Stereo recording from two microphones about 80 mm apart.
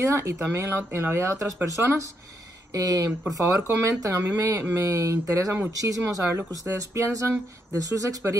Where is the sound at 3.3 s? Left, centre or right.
Right.